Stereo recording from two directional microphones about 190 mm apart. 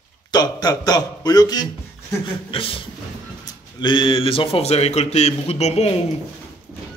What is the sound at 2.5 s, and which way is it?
A man's voice, 30° left (ahead or behind).